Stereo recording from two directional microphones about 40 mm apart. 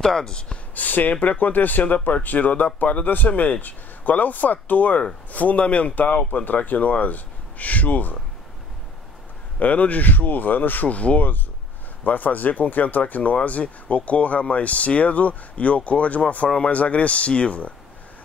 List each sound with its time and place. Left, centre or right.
0.0 s speech: centre
0.7 s speech: left
9.6 s speech: left
12.0 s speech: left